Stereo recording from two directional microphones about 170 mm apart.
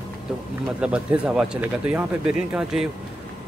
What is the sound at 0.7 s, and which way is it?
Speech, 5° right (ahead or behind).